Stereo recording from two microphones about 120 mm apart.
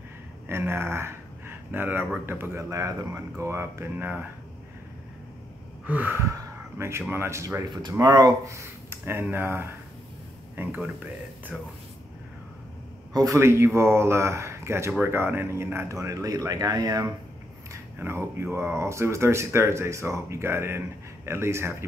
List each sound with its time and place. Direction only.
0.5 s speech: 20° right (ahead or behind)
1.7 s gasp: 15° right (ahead or behind)
2.2 s speech: 20° right (ahead or behind)
5.9 s gasp: 15° right (ahead or behind)
6.8 s speech: 20° right (ahead or behind)
11.5 s speech: 5° right (ahead or behind)
13.1 s speech: 30° right (ahead or behind)
17.9 s speech: 20° right (ahead or behind)